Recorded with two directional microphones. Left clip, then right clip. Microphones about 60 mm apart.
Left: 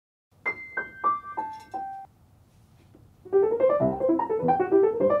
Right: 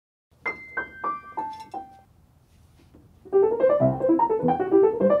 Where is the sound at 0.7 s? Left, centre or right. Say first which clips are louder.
Left 6 dB; centre.